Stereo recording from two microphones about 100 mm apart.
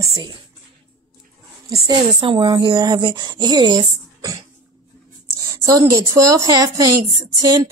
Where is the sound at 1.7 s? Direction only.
35° right (ahead or behind).